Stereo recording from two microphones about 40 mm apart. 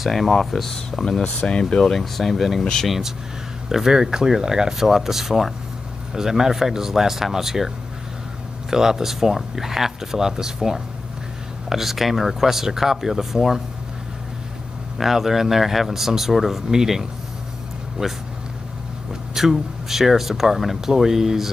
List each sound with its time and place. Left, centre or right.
0.1 s speech: centre
1.2 s speech: left; by 2.6 s centre
2.6 s speech: centre
3.6 s speech: centre
15.0 s speech: centre
19.3 s speech: centre